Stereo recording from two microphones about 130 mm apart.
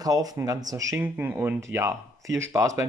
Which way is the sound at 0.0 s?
30° right (ahead or behind).